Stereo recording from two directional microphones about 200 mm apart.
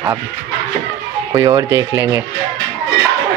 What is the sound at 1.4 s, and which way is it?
Speech, 15° right (ahead or behind).